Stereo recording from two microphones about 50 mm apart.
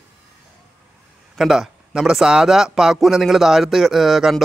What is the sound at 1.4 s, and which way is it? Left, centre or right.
A man's voice, centre.